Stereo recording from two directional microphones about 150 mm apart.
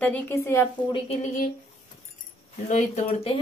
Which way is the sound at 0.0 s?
15° left (ahead or behind).